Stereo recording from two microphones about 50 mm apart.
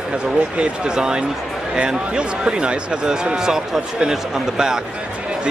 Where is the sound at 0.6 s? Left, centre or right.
Centre.